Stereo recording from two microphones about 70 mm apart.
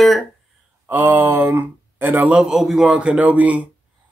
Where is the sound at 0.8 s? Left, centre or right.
Right.